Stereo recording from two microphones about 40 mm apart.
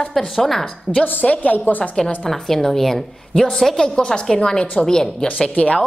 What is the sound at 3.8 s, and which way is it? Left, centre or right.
Speech, left.